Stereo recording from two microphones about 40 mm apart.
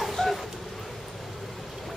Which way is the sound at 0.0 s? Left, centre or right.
Centre.